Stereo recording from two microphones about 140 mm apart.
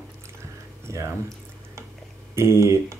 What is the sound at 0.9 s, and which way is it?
Speech, 20° right (ahead or behind).